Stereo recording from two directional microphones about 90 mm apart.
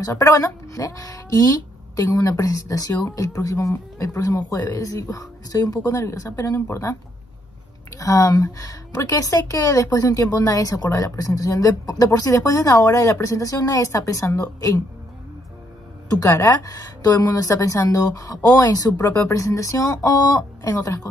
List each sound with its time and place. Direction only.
0.0 s speech: 40° left (ahead or behind)
16.1 s speech: 40° left (ahead or behind)